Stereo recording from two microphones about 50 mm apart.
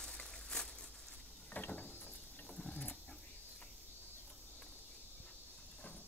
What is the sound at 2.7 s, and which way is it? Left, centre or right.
Vehicle, left.